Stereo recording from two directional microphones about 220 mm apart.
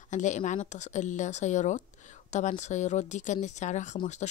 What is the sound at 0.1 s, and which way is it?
Speech, 35° left (ahead or behind).